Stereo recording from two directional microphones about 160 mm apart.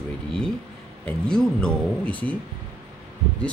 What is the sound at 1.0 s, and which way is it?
Speech, 5° left (ahead or behind).